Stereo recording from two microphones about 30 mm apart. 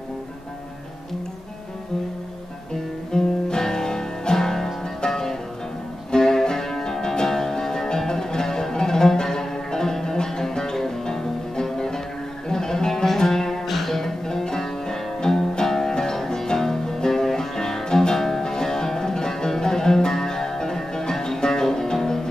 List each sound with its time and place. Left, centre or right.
3.1 s music: left